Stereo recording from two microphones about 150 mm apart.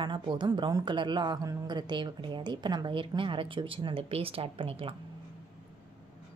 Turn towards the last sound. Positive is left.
turn(degrees=-40)  # may be behind; listen again after turning